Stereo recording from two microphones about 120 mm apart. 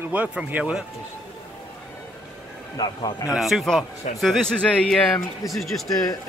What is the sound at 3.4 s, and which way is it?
A man's voice, centre (ahead or behind).